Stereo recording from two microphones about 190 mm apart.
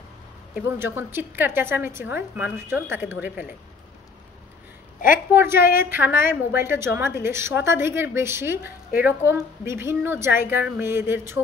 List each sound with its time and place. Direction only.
0.6 s a woman's voice: 10° right (ahead or behind)
5.0 s a woman's voice: 45° left (ahead or behind)
5.4 s a woman's voice: 10° right (ahead or behind)